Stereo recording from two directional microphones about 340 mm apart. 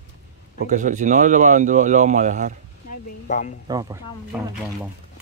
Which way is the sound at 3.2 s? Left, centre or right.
Left.